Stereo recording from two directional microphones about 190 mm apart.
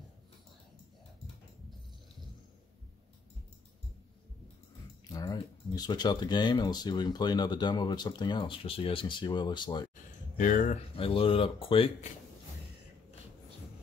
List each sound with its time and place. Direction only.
5.1 s speech: 20° left (ahead or behind)
10.3 s speech: 45° left (ahead or behind)